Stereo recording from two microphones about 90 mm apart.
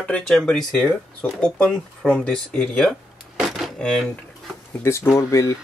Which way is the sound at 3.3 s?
5° right (ahead or behind).